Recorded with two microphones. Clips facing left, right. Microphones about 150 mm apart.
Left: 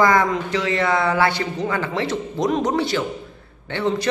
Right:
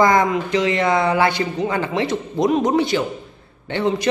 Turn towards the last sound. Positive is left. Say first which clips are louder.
# right 2 dB
turn(degrees=-15)  # may be behind; listen again after turning